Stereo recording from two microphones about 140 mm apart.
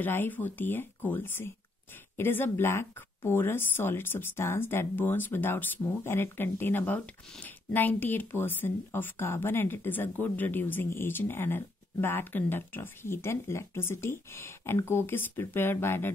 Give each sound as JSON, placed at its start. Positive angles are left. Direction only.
{"t": 0.0, "sound": "speech", "side_deg": 15}